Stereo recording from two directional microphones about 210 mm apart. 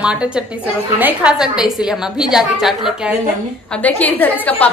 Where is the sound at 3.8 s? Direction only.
5° left (ahead or behind).